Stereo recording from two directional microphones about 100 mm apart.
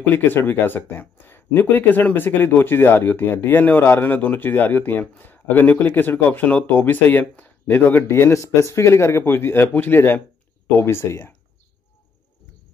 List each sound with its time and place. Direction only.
0.1 s speech: 20° left (ahead or behind)